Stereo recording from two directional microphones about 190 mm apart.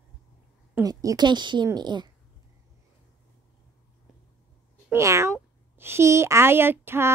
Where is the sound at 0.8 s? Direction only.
20° right (ahead or behind).